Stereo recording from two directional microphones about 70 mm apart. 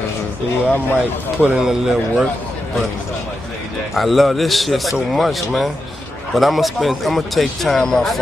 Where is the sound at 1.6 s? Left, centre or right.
Centre.